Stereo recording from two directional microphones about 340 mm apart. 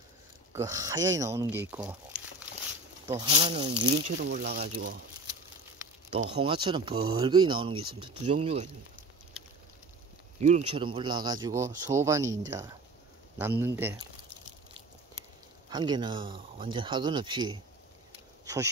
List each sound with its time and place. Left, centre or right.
0.5 s speech: centre
3.1 s speech: centre
6.0 s a sound: centre
6.4 s speech: centre
10.4 s speech: centre
15.7 s speech: centre
18.4 s a sound: centre